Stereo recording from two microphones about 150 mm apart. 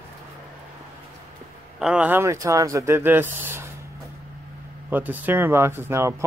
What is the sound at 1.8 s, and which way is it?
Speech, 10° right (ahead or behind).